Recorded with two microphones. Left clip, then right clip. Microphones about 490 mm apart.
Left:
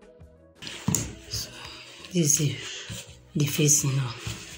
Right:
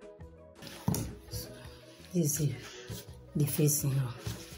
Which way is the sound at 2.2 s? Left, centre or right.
Right.